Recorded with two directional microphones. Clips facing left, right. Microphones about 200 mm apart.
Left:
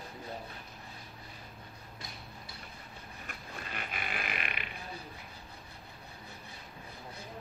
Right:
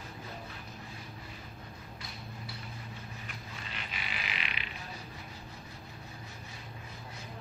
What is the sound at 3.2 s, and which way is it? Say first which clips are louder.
Frog: left 1 dB; 50° left (ahead or behind).